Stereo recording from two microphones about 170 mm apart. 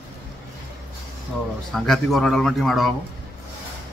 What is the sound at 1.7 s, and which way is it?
A man's voice, centre (ahead or behind).